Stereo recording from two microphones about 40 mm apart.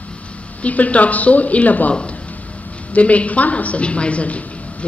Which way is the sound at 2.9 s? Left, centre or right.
Left.